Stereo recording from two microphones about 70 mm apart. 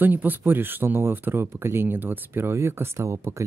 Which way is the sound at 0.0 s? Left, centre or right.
Right.